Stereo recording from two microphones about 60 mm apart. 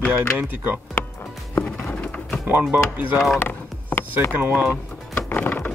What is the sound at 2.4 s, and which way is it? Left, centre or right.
Speech, right.